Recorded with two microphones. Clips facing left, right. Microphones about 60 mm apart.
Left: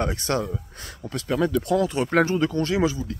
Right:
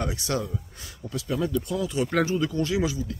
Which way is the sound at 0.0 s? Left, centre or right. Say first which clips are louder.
Left 4 dB; left.